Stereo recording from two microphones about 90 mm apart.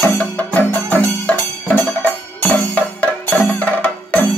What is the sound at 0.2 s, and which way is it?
Music, 15° left (ahead or behind).